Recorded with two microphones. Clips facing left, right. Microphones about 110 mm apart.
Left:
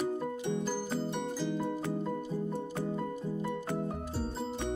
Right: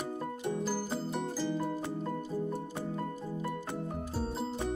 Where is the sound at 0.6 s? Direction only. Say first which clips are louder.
Left 1 dB; 5° right (ahead or behind).